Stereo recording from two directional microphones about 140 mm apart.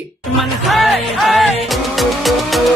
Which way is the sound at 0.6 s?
Centre (ahead or behind).